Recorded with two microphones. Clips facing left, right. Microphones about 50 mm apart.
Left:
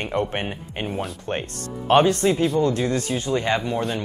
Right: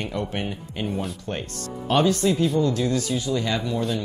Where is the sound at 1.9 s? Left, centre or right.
Left.